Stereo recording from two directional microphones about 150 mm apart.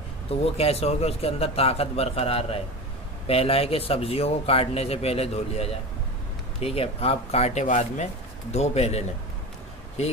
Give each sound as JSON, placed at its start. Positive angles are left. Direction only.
{"t": 0.3, "sound": "a man's voice", "side_deg": 40}